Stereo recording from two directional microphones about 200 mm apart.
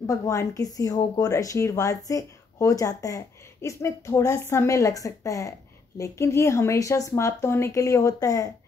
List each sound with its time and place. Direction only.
0.0 s speech: 15° left (ahead or behind)